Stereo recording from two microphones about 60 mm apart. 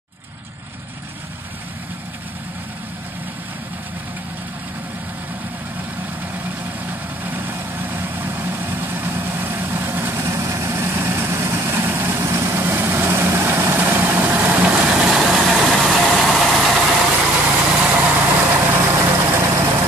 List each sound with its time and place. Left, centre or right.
6.9 s vehicle: right
10.2 s vehicle: right
12.2 s vehicle: right; by 16.8 s centre
17.6 s vehicle: centre; by 19.9 s right